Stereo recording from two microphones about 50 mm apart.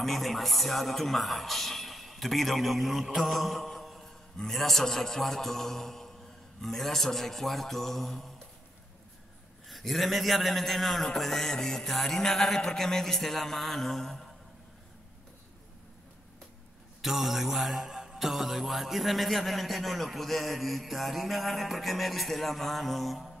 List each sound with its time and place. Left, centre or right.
0.0 s speech: centre
3.3 s a sound: centre
4.4 s a man's voice: centre
9.7 s speech: centre
17.0 s speech: centre
17.8 s speech: centre